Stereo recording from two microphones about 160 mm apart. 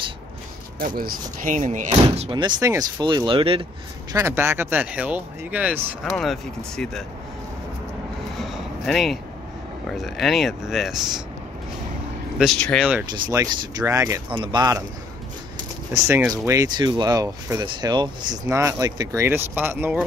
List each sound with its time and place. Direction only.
0.7 s speech: 65° right (ahead or behind)
1.9 s speech: 35° right (ahead or behind)
4.1 s speech: 15° right (ahead or behind)
6.0 s speech: centre (ahead or behind)
8.4 s a sound: centre (ahead or behind)
9.8 s speech: centre (ahead or behind)
12.4 s speech: 5° left (ahead or behind)
13.1 s speech: 25° right (ahead or behind)
14.3 s speech: 30° right (ahead or behind)
15.9 s speech: 20° right (ahead or behind)